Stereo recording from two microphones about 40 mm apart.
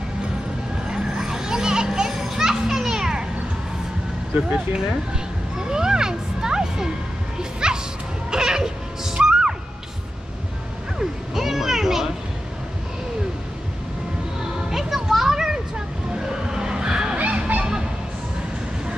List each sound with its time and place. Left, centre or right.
0.8 s children playing: centre
4.5 s speech: centre
5.6 s a sound: centre
7.6 s music: centre
11.0 s music: centre
14.7 s music: centre
16.2 s skidding: centre
17.2 s honk: right